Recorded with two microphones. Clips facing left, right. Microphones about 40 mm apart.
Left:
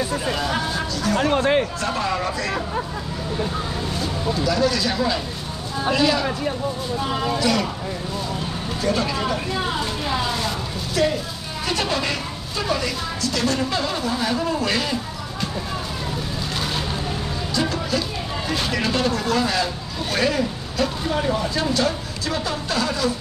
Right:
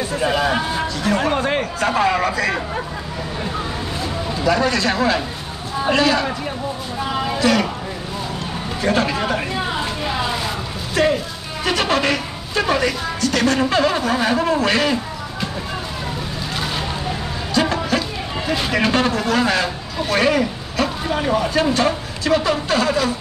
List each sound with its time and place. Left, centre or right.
0.2 s speech: right
1.3 s speech: centre
1.6 s speech: right
4.5 s speech: right
7.3 s speech: right
8.8 s speech: right
11.0 s speech: right
16.5 s vehicle: centre
17.6 s music: right
18.7 s speech: right